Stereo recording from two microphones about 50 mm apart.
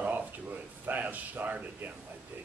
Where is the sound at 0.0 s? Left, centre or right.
Right.